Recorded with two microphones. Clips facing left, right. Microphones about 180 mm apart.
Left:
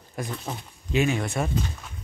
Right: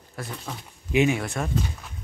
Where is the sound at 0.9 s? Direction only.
15° right (ahead or behind).